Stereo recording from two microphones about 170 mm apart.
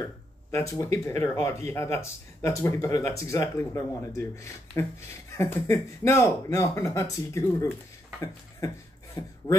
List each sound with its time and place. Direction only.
0.6 s speech: 20° left (ahead or behind)